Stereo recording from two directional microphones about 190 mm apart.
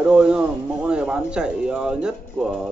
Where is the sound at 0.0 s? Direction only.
5° right (ahead or behind).